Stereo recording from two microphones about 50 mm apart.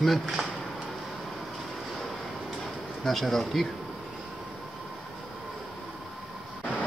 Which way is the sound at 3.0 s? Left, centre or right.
Centre.